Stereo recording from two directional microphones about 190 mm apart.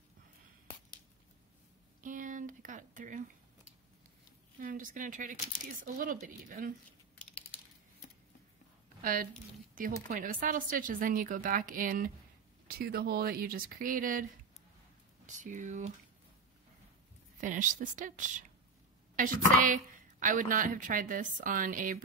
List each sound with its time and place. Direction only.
2.0 s a sound: 45° right (ahead or behind)
4.6 s a woman's voice: 45° right (ahead or behind)
9.0 s a woman's voice: 45° right (ahead or behind)
15.2 s a woman's voice: 40° right (ahead or behind)
17.4 s a woman's voice: 45° right (ahead or behind)